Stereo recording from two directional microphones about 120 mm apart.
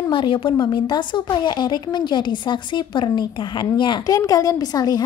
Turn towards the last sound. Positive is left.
turn(degrees=35)  # may be behind; listen again after turning